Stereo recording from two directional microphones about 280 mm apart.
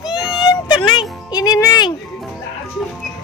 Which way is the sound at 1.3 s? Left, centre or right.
Centre.